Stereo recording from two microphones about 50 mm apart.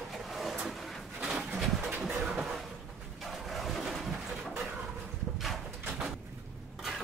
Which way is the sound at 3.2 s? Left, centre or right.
Centre.